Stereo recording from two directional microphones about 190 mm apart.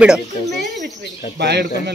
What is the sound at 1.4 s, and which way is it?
Speech, 60° right (ahead or behind).